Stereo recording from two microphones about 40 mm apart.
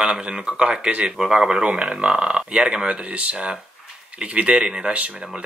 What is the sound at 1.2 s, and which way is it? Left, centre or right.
Speech, centre.